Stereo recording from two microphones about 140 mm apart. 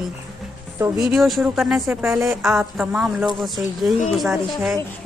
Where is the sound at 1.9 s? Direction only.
15° right (ahead or behind).